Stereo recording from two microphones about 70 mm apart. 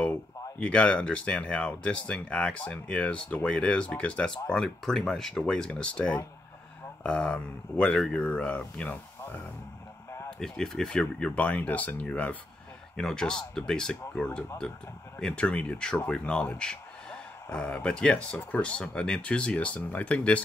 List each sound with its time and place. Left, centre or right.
0.6 s speech: centre
4.6 s speech: centre; by 9.4 s left
10.4 s speech: centre
12.9 s speech: centre